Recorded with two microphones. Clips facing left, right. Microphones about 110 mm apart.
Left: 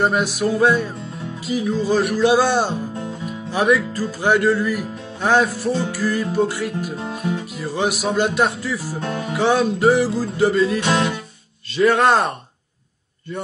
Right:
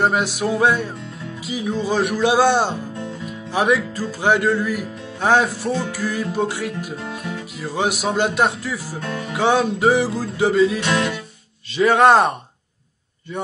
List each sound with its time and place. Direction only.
0.0 s speech: 15° right (ahead or behind)
7.0 s music: 25° left (ahead or behind)
7.6 s speech: 10° right (ahead or behind)
10.8 s music: 20° left (ahead or behind)
11.7 s speech: 10° right (ahead or behind)